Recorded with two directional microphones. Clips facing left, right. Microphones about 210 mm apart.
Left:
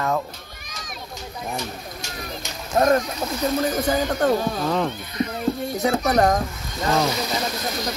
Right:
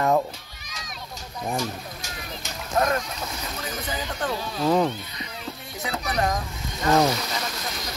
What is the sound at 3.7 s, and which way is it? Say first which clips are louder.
Speech: left 10 dB; 45° left (ahead or behind).